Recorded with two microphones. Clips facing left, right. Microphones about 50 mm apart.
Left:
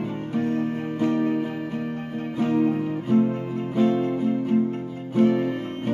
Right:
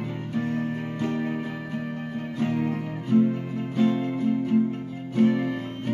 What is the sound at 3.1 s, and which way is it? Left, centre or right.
Music, left.